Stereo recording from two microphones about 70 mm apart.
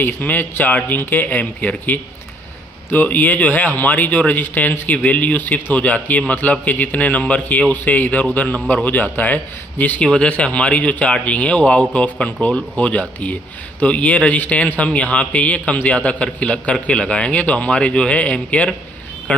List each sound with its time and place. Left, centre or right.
0.0 s speech: left